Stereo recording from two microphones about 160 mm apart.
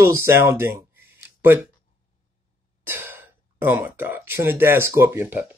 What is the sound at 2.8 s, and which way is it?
Speech, 15° right (ahead or behind).